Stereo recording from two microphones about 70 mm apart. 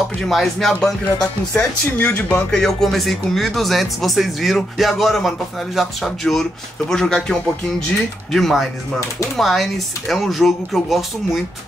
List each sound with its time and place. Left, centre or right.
0.3 s speech: centre
2.0 s speech: left
2.5 s speech: centre